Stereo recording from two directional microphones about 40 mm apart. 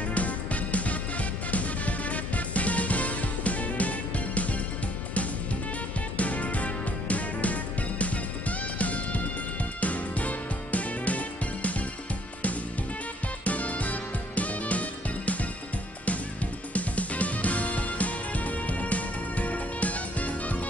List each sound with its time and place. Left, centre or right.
0.1 s music: left
6.1 s music: left
13.4 s music: left
16.7 s music: left